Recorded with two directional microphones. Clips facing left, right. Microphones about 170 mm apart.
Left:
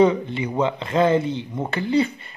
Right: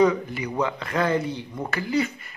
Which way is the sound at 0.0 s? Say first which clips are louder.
Left 3 dB; 25° left (ahead or behind).